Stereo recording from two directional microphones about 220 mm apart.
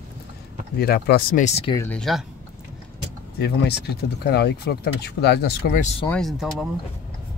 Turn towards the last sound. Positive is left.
turn(degrees=0)  # may be behind; listen again after turning